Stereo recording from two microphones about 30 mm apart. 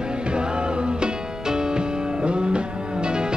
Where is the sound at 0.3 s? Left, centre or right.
Right.